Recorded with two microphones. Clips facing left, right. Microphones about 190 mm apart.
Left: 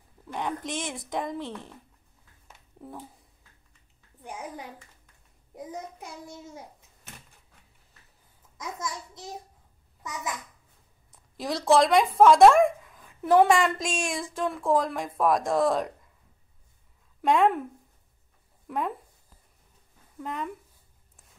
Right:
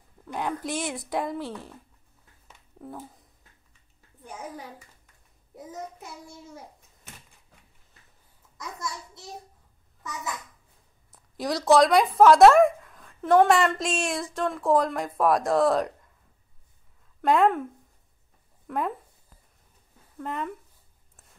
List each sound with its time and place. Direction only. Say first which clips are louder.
0.3 s a woman's voice: right 2 dB; 5° right (ahead or behind)
2.8 s a woman's voice: right 2 dB; centre (ahead or behind)
4.2 s a child's voice: even; 15° left (ahead or behind)
5.7 s a child's voice: right 1 dB; 15° left (ahead or behind)
11.1 s a woman's voice: right 2 dB; centre (ahead or behind)
17.2 s speech: right 1 dB; centre (ahead or behind)
18.7 s a woman's voice: right 1 dB; centre (ahead or behind)
20.2 s a woman's voice: right 2 dB; centre (ahead or behind)